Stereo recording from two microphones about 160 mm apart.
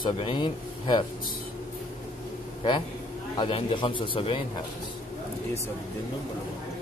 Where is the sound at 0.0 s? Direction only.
30° left (ahead or behind).